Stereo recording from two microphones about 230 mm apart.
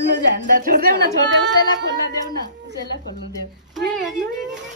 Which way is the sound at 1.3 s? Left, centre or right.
Right.